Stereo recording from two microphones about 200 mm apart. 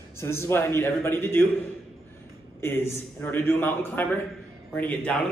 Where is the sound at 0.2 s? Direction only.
10° left (ahead or behind).